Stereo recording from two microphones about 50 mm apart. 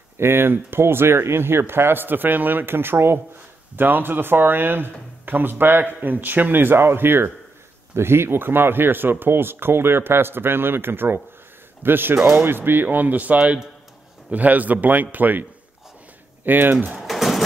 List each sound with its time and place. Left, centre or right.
0.2 s speech: right
12.2 s speech: right
12.4 s a man's voice: right
16.4 s speech: right
17.0 s bird: centre